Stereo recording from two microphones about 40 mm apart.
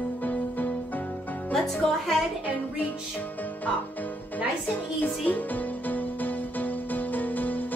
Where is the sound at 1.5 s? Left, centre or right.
Centre.